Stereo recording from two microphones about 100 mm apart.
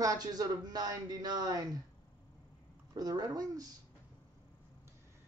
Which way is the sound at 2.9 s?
40° right (ahead or behind).